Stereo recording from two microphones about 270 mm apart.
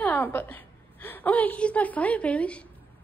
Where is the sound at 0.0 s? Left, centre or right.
Centre.